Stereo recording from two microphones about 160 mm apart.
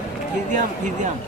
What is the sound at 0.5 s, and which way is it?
Speech, 50° right (ahead or behind).